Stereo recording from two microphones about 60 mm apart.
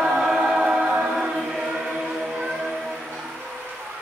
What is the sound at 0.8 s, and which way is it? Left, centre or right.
Chant, centre.